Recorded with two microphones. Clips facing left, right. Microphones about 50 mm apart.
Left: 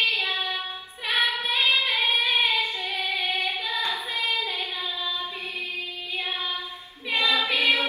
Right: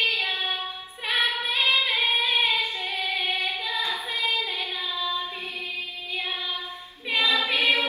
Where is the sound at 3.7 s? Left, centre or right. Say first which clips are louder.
Even; left.